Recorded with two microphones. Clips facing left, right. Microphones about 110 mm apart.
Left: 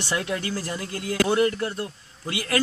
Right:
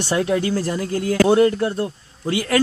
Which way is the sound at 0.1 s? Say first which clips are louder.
Right 8 dB; 30° right (ahead or behind).